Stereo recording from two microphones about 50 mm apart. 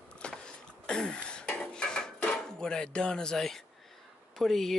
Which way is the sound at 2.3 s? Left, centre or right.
Centre.